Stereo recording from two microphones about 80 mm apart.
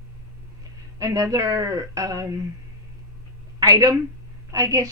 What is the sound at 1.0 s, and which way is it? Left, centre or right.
A woman's voice, right.